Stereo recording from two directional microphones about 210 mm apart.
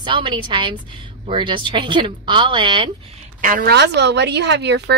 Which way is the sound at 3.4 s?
45° right (ahead or behind).